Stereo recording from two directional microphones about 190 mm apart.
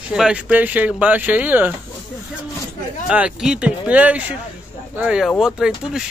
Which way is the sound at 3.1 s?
5° right (ahead or behind).